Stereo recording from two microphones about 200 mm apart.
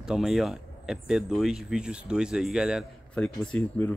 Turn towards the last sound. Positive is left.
turn(degrees=5)  # may be behind; listen again after turning